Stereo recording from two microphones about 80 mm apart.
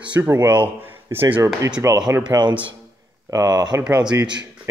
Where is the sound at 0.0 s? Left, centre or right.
Centre.